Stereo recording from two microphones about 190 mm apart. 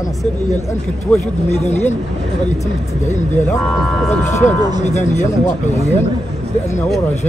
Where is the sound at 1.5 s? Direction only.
35° left (ahead or behind).